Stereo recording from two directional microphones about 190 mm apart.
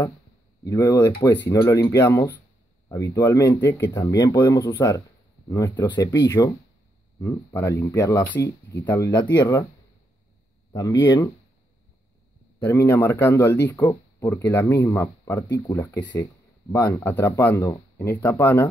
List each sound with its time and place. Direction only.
0.7 s speech: 20° left (ahead or behind)
10.7 s speech: 20° left (ahead or behind)
12.5 s speech: 10° left (ahead or behind)